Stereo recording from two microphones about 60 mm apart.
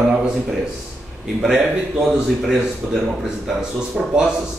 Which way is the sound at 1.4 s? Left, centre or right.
Centre.